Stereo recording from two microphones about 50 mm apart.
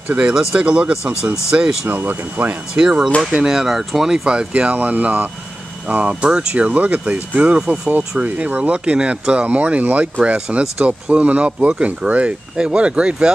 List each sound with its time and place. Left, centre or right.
0.3 s speech: centre
0.6 s speech: right
1.9 s speech: right
2.8 s speech: centre
8.2 s speech: right